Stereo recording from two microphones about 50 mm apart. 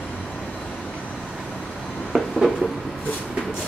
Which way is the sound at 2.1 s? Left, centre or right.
Centre.